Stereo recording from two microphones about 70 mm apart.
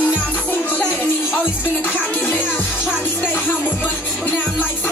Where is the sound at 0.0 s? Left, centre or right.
Left.